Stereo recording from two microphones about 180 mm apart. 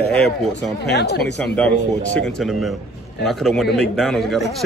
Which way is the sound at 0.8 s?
65° left (ahead or behind).